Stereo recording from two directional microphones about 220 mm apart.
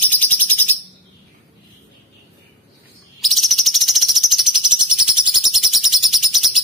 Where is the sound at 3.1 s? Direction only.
Centre (ahead or behind).